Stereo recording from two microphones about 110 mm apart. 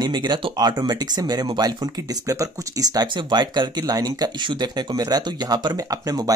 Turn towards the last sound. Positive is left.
turn(degrees=-35)  # may be behind; listen again after turning